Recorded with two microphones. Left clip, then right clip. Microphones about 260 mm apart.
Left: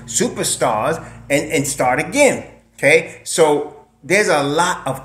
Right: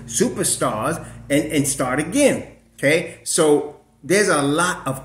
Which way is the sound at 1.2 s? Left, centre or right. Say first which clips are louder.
Left 2 dB; left.